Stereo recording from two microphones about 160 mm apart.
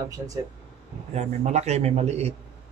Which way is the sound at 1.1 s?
45° right (ahead or behind).